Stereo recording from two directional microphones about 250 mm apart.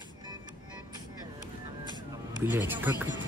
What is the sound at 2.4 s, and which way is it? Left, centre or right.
Music, centre.